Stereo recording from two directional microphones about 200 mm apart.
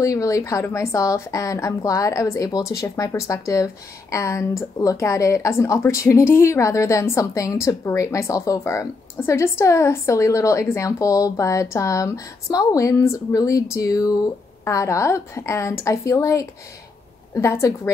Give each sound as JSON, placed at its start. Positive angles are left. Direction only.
{"t": 0.0, "sound": "a woman's voice", "side_deg": 15}